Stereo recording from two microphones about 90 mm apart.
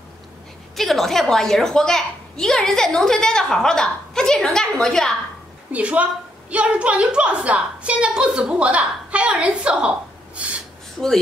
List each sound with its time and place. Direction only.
0.7 s a woman's voice: centre (ahead or behind)
5.7 s a woman's voice: 15° right (ahead or behind)